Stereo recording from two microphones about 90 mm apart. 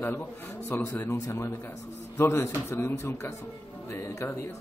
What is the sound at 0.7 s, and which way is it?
A man's voice, 35° left (ahead or behind).